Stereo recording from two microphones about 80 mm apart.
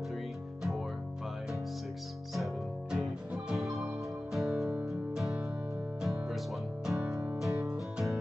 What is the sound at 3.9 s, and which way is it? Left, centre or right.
Music, centre.